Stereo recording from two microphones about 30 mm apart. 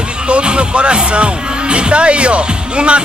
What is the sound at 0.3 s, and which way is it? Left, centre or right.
Speech, right.